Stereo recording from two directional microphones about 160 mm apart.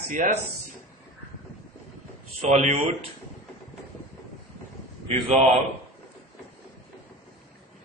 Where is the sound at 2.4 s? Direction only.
45° right (ahead or behind).